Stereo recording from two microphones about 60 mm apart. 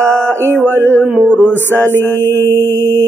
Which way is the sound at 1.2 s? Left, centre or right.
Left.